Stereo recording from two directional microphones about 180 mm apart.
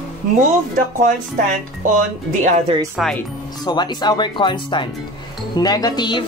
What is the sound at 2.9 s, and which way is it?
Speech, centre (ahead or behind).